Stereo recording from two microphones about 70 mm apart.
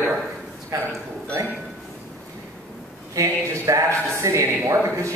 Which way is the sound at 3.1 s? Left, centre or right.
Right.